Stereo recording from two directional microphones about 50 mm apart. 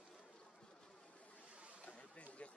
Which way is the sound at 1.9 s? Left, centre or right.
Left.